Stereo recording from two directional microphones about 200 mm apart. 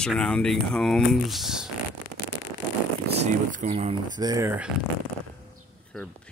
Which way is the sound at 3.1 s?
35° right (ahead or behind).